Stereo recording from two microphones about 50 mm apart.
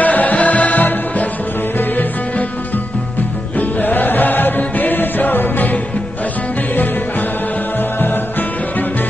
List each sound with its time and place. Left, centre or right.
0.0 s music: left
3.5 s music: left